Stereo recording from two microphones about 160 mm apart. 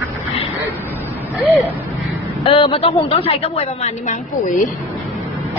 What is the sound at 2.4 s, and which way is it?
A woman's voice, 35° left (ahead or behind).